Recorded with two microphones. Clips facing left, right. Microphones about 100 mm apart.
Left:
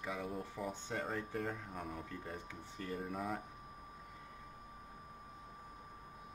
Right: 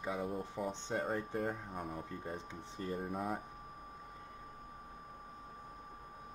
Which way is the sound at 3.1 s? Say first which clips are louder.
Right 1 dB; 5° right (ahead or behind).